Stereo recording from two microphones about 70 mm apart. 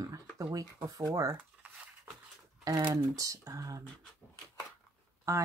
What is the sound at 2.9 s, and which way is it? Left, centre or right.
Speech, right.